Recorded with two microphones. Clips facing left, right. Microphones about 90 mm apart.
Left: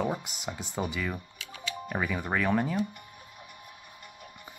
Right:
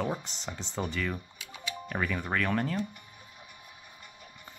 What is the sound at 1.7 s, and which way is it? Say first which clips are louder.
Speech: left 1 dB; 10° left (ahead or behind).